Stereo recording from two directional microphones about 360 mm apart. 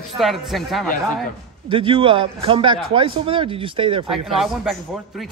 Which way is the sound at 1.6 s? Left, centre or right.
Centre.